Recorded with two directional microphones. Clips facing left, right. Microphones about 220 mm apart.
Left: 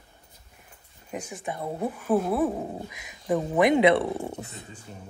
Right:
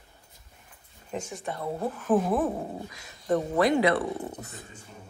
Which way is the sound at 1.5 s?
15° left (ahead or behind).